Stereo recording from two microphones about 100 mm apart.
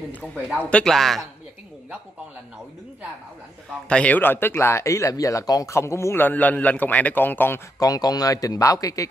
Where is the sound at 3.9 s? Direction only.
10° left (ahead or behind).